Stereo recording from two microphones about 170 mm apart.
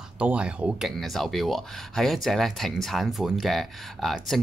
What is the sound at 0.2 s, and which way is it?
Speech, 5° right (ahead or behind).